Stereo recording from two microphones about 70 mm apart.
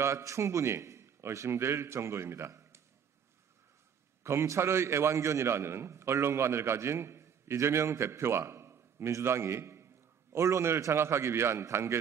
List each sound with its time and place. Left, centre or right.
0.0 s a man's voice: right
4.2 s a man's voice: right